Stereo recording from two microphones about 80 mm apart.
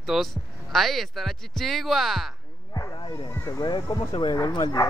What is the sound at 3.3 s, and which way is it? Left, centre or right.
Speech, left.